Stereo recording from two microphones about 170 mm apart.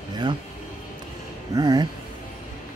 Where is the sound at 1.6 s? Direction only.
20° right (ahead or behind).